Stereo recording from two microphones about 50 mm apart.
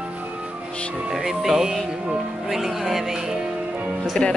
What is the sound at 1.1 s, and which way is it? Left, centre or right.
Speech, centre.